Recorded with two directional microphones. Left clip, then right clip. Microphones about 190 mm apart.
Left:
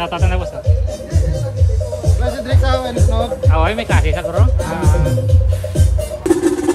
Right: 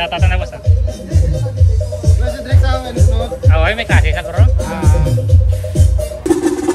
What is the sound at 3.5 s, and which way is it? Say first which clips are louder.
Speech: right 6 dB; 20° left (ahead or behind).